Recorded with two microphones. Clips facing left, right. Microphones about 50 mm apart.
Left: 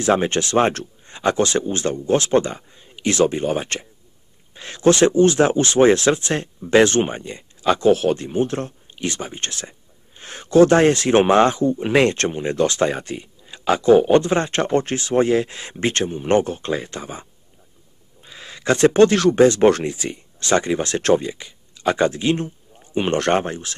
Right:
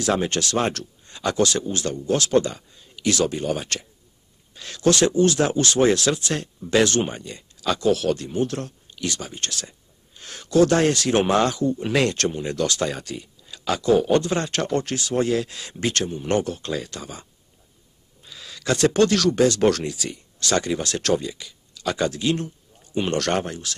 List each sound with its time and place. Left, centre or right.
0.0 s speech: left